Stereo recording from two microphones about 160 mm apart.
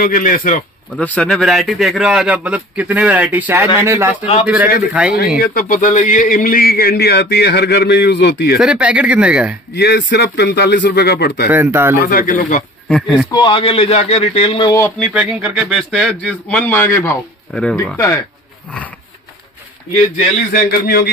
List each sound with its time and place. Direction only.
0.0 s speech: 60° left (ahead or behind)
0.9 s a man's voice: 5° left (ahead or behind); by 5.1 s 10° right (ahead or behind)
5.4 s a man's voice: 65° left (ahead or behind); by 8.5 s 90° left
8.5 s speech: 5° right (ahead or behind)
9.8 s a man's voice: 90° left
11.4 s speech: 15° right (ahead or behind)
12.0 s speech: 65° left (ahead or behind)
12.8 s a man's voice: centre (ahead or behind)
13.3 s speech: 30° left (ahead or behind)
15.1 s a man's voice: 5° right (ahead or behind); by 18.1 s 20° left (ahead or behind)
20.6 s a man's voice: 75° left (ahead or behind)